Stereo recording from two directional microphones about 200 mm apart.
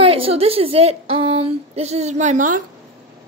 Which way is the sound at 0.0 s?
30° right (ahead or behind).